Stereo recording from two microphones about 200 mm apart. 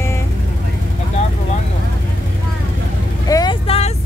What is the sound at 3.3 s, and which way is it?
Vehicle, 20° left (ahead or behind).